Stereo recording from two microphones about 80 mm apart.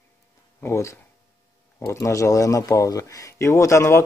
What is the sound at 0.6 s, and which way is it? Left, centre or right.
Speech, left.